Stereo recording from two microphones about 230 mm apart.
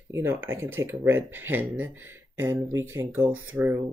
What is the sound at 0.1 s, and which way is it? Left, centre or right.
Speech, centre.